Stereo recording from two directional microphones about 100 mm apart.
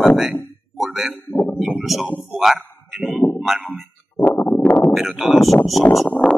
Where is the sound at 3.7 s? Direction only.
15° left (ahead or behind).